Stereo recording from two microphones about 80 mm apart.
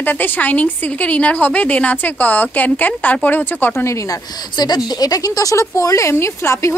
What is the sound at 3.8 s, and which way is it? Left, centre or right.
Speech, left.